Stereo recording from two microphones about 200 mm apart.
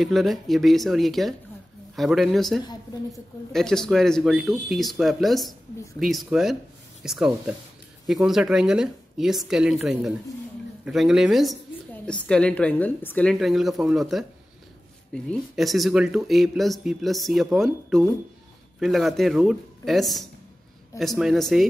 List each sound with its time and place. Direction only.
0.0 s speech: centre (ahead or behind)